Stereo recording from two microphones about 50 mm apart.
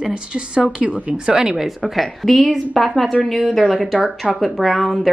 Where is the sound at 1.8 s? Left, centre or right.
Centre.